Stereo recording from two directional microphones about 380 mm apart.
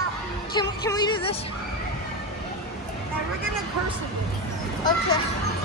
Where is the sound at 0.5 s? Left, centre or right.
Centre.